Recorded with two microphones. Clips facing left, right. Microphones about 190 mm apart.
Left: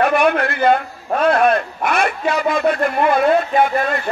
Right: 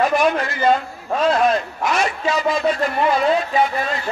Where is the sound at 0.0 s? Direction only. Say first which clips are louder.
Left 2 dB; 60° left (ahead or behind).